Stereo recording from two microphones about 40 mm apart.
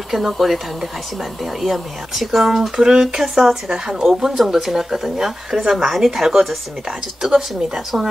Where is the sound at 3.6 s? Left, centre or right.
Centre.